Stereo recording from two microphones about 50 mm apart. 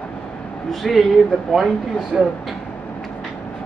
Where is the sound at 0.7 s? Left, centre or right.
Centre.